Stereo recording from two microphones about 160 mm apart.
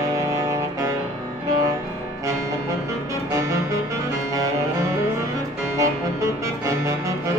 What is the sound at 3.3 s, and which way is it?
Music, 20° right (ahead or behind).